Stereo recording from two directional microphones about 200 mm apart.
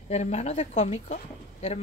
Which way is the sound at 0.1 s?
35° left (ahead or behind).